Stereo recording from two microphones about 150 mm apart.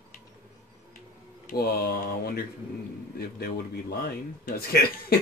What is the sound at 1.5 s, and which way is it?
A man's voice, 80° left.